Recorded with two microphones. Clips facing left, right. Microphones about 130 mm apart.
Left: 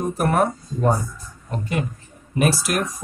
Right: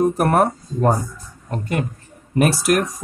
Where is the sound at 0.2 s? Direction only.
60° right (ahead or behind).